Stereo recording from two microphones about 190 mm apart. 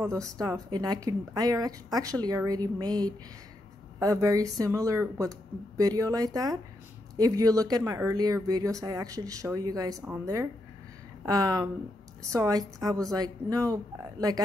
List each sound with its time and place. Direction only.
0.0 s a woman's voice: 15° right (ahead or behind)